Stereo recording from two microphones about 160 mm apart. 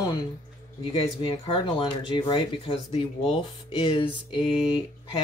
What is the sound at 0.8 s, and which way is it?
Speech, 35° left (ahead or behind).